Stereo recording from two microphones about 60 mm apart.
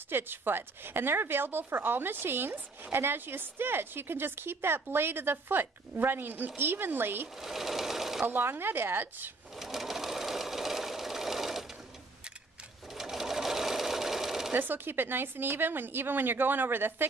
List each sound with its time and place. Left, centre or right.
0.1 s speech: right
7.4 s sewing machine: centre
8.3 s speech: right
9.6 s sewing machine: centre
12.9 s sewing machine: centre
14.5 s speech: right